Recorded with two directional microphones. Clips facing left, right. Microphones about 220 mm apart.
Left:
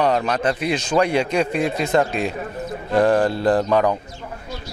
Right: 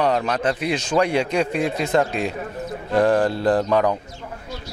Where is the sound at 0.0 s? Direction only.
15° left (ahead or behind).